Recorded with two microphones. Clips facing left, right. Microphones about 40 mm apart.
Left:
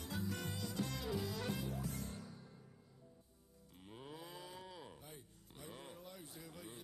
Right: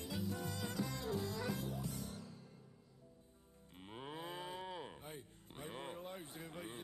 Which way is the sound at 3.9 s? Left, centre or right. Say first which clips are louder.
Right 5 dB; right.